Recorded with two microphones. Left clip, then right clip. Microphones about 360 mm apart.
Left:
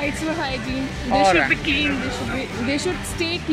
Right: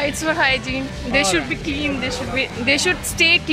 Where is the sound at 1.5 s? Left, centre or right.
Centre.